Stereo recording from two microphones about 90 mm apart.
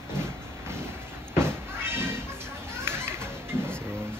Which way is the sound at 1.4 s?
25° right (ahead or behind).